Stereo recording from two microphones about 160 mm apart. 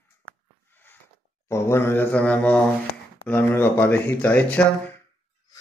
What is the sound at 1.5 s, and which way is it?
Speech, 15° left (ahead or behind).